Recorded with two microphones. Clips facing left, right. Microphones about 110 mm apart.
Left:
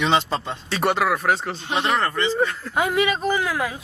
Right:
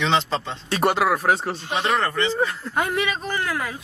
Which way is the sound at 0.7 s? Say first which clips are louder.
Right 1 dB; 5° right (ahead or behind).